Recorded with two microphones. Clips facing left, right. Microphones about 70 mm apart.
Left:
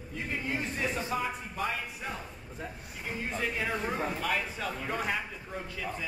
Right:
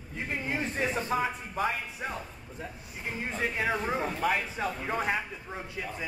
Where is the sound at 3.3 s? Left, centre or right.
Right.